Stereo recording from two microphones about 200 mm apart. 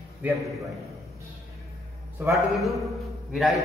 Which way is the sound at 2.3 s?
Centre (ahead or behind).